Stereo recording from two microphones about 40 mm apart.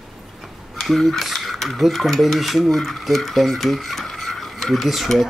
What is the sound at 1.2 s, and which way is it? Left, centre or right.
Mechanisms, centre.